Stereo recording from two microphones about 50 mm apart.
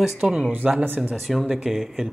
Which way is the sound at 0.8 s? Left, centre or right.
Right.